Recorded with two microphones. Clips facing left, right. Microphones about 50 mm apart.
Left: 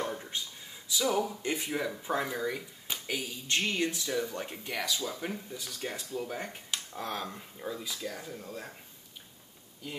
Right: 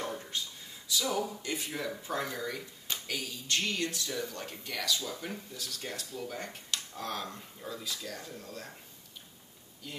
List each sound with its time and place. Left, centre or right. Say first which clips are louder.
0.0 s a sound: left 2 dB; centre
0.8 s speech: left 3 dB; centre
9.8 s speech: left 3 dB; centre